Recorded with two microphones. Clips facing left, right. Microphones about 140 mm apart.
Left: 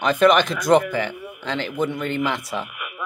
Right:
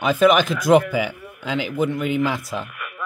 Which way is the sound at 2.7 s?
15° left (ahead or behind).